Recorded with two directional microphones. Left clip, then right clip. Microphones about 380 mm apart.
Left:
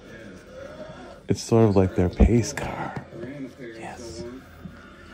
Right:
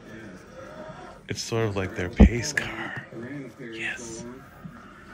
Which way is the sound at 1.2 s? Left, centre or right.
Centre.